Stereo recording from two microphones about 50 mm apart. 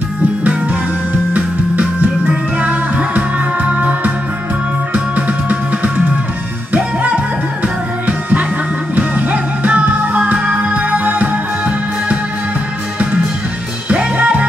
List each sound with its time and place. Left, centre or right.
0.4 s music: right
7.6 s music: right
13.8 s music: right